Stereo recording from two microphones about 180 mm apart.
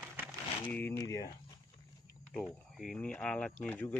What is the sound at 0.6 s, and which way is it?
Speech, 10° left (ahead or behind).